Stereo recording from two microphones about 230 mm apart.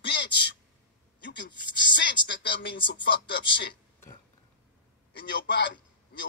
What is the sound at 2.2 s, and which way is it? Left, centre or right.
Speech, left.